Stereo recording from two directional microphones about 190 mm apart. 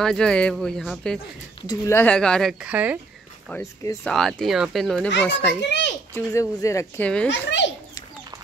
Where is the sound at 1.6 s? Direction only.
15° left (ahead or behind); by 2.9 s 5° right (ahead or behind).